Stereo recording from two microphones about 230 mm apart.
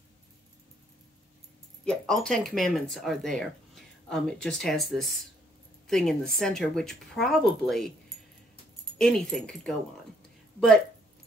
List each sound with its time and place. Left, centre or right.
1.9 s a woman's voice: centre
8.9 s speech: centre